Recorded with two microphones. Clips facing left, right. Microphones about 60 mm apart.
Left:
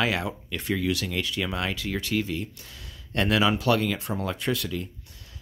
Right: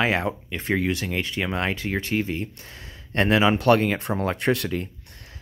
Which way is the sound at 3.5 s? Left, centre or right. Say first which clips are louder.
Right 5 dB; right.